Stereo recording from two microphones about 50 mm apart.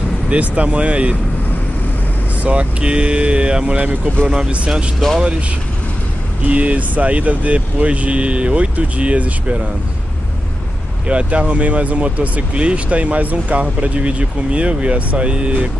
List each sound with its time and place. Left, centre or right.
0.3 s speech: right
2.4 s speech: right
4.3 s speech: centre
6.4 s speech: right
11.1 s speech: right